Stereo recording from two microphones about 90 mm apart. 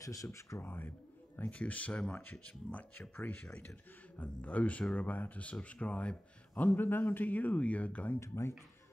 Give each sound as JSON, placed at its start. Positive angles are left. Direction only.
{"t": 0.0, "sound": "speech", "side_deg": 40}
{"t": 0.7, "sound": "speech", "side_deg": 20}
{"t": 8.2, "sound": "speech", "side_deg": 30}